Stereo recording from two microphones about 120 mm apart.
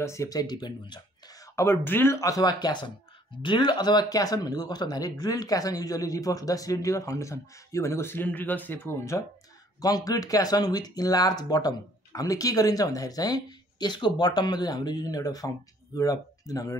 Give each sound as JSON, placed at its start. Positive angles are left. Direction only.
{"t": 0.0, "sound": "speech", "side_deg": 25}
{"t": 1.5, "sound": "speech", "side_deg": 20}